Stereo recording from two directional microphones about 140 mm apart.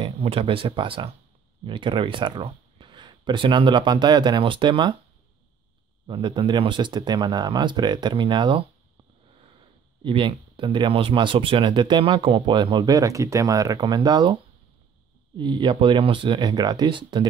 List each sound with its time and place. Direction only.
0.0 s speech: 40° right (ahead or behind)
6.0 s speech: 35° right (ahead or behind)
10.0 s speech: 35° right (ahead or behind)
15.3 s speech: 35° right (ahead or behind)